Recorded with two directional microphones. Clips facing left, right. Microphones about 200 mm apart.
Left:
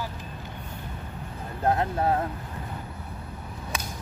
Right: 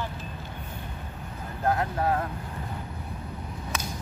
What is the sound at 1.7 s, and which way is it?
Speech, 25° left (ahead or behind).